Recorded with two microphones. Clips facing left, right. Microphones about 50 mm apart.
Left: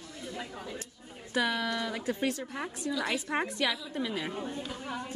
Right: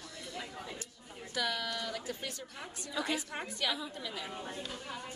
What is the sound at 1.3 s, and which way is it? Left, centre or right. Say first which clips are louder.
Speech: left 6 dB; left.